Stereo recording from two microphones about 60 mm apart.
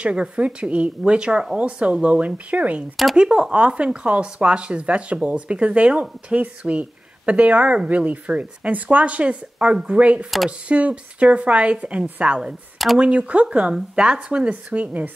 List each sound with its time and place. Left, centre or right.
0.0 s speech: centre
12.7 s speech: centre
13.0 s speech: right